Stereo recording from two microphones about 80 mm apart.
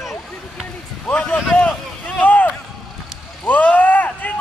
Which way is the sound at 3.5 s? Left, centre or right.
Left.